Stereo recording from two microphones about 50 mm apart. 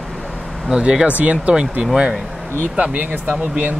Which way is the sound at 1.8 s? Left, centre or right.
Centre.